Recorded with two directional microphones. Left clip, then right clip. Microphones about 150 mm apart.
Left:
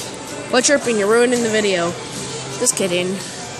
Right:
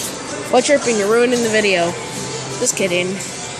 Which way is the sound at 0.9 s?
25° left (ahead or behind).